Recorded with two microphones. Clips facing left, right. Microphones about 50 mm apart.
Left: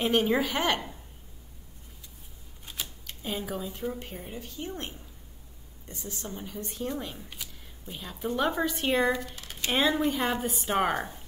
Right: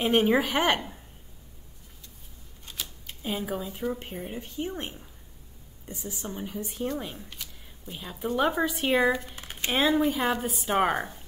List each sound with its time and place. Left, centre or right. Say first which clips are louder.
0.0 s a woman's voice: right 3 dB; centre
0.4 s a woman's voice: right 3 dB; right
2.6 s a sound: even; centre
3.1 s speech: right 3 dB; centre
4.0 s a woman's voice: right 3 dB; centre
7.2 s a sound: even; centre
7.9 s a woman's voice: right 2 dB; centre
9.2 s a sound: right 1 dB; right
9.7 s speech: right 2 dB; centre